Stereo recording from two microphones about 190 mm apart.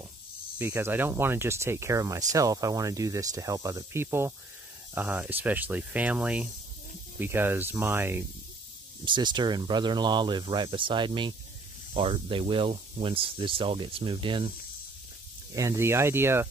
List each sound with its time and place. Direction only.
0.6 s speech: 10° right (ahead or behind)
9.0 s speech: 25° right (ahead or behind)
15.5 s speech: 15° right (ahead or behind)